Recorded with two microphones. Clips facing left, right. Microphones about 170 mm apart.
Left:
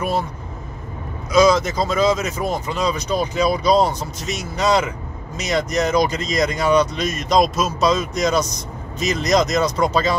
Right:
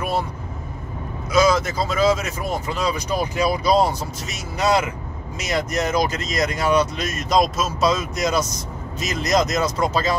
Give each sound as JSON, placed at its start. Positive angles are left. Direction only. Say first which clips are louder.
{"t": 1.3, "sound": "speech", "louder": "left 3 dB", "side_deg": -5}